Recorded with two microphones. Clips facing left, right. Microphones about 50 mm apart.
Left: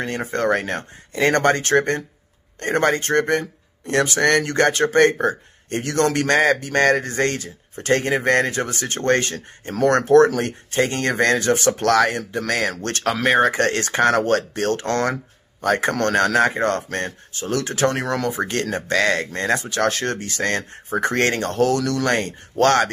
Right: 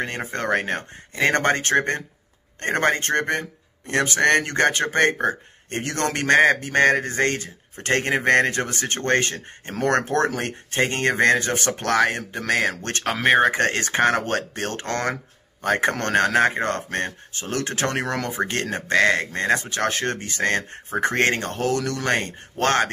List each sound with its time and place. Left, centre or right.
0.3 s speech: right
2.6 s a man's voice: right